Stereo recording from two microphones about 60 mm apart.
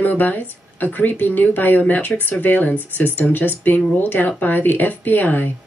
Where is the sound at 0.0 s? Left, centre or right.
Left.